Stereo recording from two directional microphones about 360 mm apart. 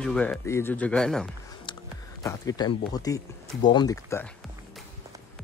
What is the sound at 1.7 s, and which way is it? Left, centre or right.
Music, centre.